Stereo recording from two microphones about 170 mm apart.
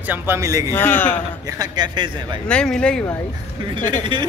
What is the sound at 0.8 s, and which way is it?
Speech, 10° left (ahead or behind).